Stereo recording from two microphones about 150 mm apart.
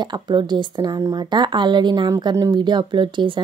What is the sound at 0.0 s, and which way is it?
A woman's voice, 30° right (ahead or behind).